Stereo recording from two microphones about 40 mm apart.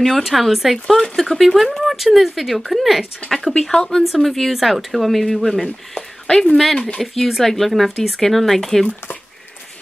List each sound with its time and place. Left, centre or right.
0.0 s speech: centre
1.8 s a sound: centre
2.1 s speech: centre
3.3 s a woman's voice: centre
4.2 s speech: centre
6.2 s speech: left
6.5 s speech: centre